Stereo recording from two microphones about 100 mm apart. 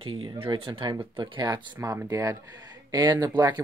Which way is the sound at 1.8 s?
35° right (ahead or behind).